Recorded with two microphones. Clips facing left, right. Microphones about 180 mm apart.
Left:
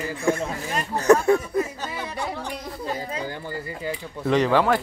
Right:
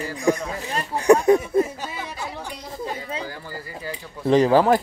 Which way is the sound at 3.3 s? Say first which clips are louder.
Left 3 dB; 25° left (ahead or behind).